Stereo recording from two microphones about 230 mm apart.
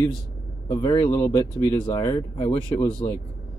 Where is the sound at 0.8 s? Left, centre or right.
Centre.